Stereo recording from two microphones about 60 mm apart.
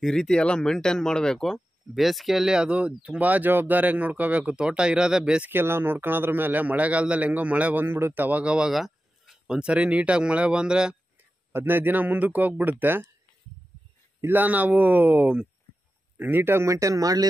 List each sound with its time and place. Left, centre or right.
0.0 s speech: centre
2.0 s speech: centre
5.5 s speech: right
7.8 s speech: right; by 8.7 s centre
8.7 s a sound: centre
9.6 s speech: centre
11.5 s a man's voice: right
14.2 s a man's voice: right
16.6 s speech: right